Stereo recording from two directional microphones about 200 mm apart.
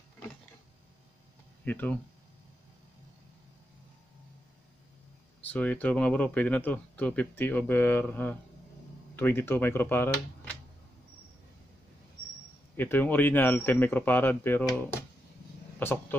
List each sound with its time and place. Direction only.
1.6 s speech: 10° left (ahead or behind)
5.4 s speech: 10° left (ahead or behind)
12.7 s speech: 10° left (ahead or behind)